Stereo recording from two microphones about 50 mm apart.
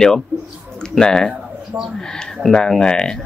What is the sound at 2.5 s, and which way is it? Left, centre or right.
Speech, centre.